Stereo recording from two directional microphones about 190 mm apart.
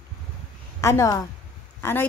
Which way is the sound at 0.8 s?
15° left (ahead or behind).